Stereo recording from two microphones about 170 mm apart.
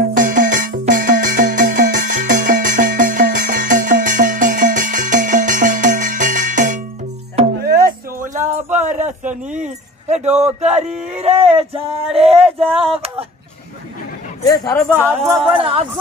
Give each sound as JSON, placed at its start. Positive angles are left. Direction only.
{"t": 0.1, "sound": "music", "side_deg": -50}
{"t": 7.5, "sound": "a sound", "side_deg": -65}
{"t": 11.1, "sound": "speech", "side_deg": -40}
{"t": 14.4, "sound": "speech", "side_deg": 20}
{"t": 15.2, "sound": "speech", "side_deg": 0}
{"t": 15.5, "sound": "speech", "side_deg": -30}